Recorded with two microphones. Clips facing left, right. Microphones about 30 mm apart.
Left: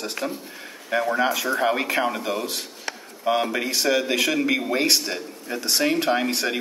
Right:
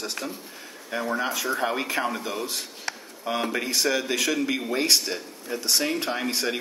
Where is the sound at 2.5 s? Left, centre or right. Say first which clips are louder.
Left 1 dB; left.